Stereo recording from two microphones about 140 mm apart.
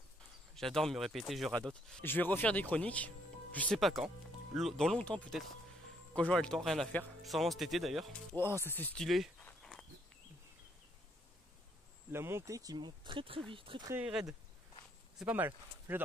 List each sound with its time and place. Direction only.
0.6 s speech: 5° left (ahead or behind)
8.3 s speech: 30° right (ahead or behind)
8.7 s speech: 15° left (ahead or behind)
9.0 s speech: centre (ahead or behind)
9.5 s a sound: 5° left (ahead or behind)
12.1 s speech: 15° right (ahead or behind); by 13.8 s 40° right (ahead or behind)
14.0 s speech: 5° right (ahead or behind)